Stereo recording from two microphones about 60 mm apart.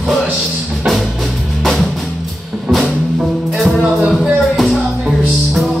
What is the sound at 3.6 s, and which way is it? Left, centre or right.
Music, centre.